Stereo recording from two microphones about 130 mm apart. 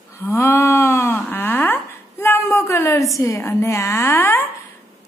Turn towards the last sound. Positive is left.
turn(degrees=20)  # may be behind; listen again after turning